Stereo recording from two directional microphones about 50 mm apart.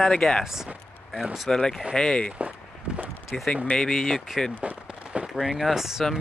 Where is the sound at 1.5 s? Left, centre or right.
Centre.